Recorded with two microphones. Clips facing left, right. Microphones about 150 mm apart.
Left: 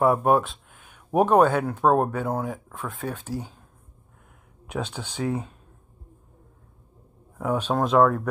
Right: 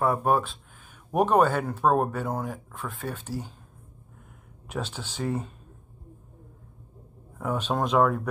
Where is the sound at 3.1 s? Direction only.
10° left (ahead or behind).